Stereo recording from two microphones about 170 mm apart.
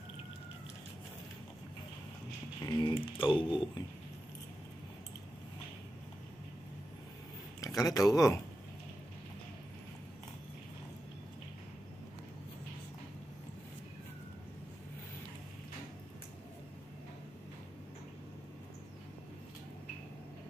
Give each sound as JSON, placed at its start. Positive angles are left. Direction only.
{"t": 2.6, "sound": "speech", "side_deg": 20}
{"t": 7.6, "sound": "speech", "side_deg": 20}